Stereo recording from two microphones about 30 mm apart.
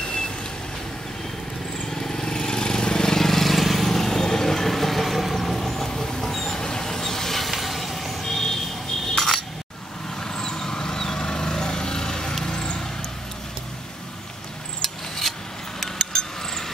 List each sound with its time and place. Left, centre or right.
1.9 s vehicle: centre
3.3 s vehicle: centre
9.1 s coin: centre
10.2 s vehicle: centre
14.8 s filing: centre
15.8 s a sound: centre